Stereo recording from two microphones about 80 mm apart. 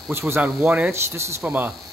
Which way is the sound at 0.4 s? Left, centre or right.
Centre.